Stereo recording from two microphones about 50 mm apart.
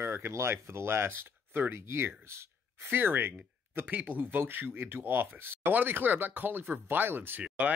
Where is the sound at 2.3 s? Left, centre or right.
Right.